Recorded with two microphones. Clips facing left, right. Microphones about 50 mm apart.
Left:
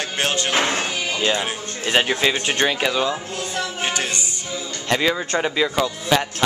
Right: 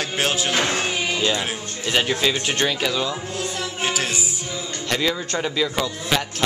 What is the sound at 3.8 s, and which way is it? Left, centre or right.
Music, centre.